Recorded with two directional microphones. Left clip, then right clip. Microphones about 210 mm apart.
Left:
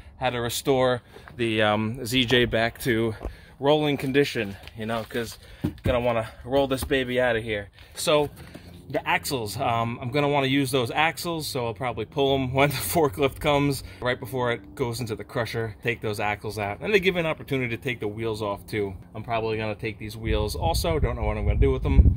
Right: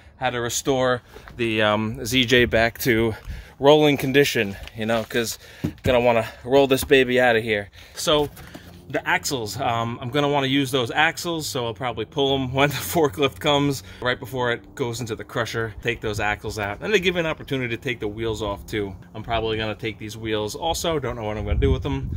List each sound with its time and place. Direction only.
0.2 s speech: 10° left (ahead or behind); by 7.6 s 50° right (ahead or behind)
8.0 s speech: 5° right (ahead or behind)